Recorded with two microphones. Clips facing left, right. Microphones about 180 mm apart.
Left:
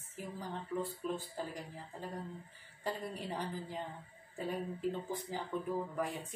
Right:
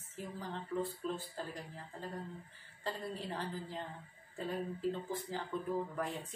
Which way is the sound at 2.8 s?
15° left (ahead or behind).